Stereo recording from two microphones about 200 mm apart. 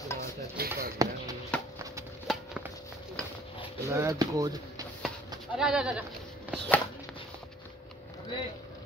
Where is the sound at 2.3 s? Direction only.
Centre (ahead or behind).